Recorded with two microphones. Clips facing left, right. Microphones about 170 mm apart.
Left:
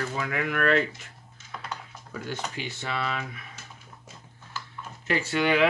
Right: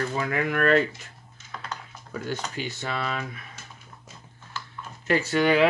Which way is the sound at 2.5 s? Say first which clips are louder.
Right 2 dB; 40° right (ahead or behind).